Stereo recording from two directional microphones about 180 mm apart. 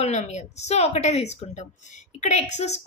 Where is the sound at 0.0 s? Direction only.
40° left (ahead or behind).